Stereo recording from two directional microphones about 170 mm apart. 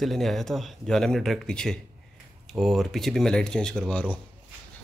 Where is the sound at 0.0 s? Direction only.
Centre (ahead or behind).